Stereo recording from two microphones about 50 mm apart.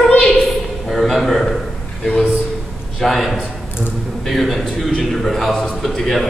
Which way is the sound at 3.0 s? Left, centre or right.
Centre.